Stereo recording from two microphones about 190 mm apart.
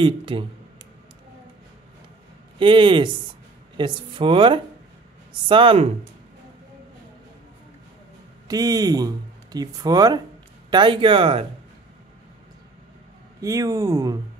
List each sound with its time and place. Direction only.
0.0 s speech: 25° right (ahead or behind)
2.6 s speech: 25° right (ahead or behind)
8.5 s speech: 20° right (ahead or behind)
13.4 s speech: 15° right (ahead or behind)